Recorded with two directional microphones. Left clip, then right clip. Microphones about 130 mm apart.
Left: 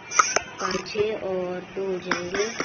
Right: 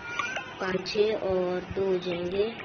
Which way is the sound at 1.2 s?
Centre (ahead or behind).